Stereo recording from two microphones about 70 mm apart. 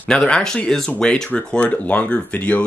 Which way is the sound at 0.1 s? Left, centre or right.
Centre.